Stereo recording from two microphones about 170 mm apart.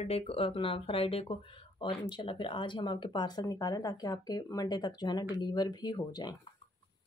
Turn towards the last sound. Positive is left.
turn(degrees=25)  # may be behind; listen again after turning